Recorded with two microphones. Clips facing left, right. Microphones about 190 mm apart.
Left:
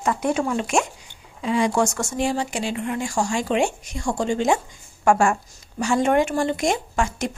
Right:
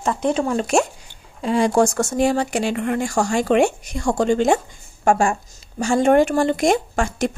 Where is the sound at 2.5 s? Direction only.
60° right (ahead or behind).